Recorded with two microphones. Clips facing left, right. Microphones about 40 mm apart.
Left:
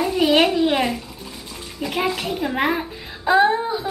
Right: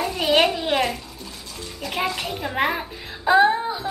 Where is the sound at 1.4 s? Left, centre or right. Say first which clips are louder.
Left 4 dB; centre.